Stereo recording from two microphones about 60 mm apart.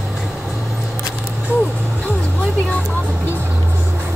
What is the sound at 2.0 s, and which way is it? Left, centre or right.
Vehicle, left.